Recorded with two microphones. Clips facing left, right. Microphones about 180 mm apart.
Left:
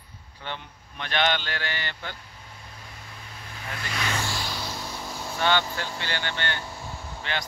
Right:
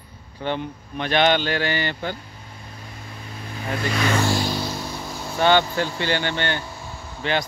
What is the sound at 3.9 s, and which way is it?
Speech, 60° right (ahead or behind).